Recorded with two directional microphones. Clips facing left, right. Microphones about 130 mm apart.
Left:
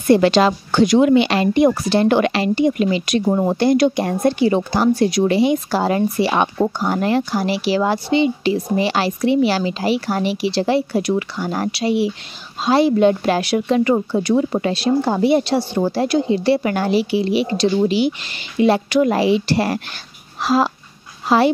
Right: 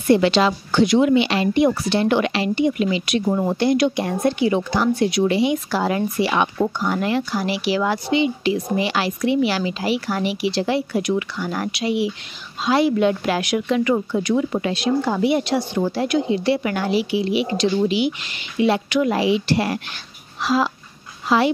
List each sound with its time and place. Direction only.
0.1 s a woman's voice: 45° left (ahead or behind)